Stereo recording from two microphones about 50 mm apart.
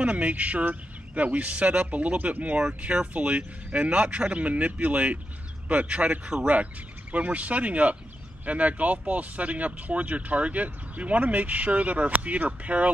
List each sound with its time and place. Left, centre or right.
0.0 s speech: right